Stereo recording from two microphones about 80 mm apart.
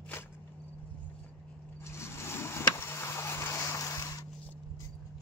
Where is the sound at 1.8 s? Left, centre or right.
Left.